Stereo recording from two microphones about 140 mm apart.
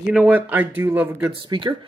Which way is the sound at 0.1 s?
10° right (ahead or behind).